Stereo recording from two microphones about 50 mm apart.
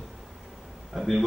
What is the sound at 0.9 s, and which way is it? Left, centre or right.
Speech, centre.